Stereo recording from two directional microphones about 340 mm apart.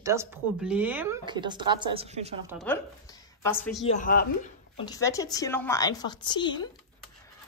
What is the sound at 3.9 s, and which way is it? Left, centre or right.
Speech, left.